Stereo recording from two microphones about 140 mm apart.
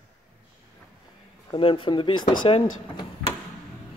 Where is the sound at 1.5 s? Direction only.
40° left (ahead or behind).